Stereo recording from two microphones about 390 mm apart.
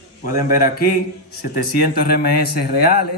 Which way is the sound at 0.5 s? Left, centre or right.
Left.